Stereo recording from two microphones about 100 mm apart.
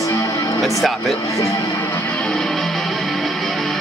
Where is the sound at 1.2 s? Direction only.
30° left (ahead or behind).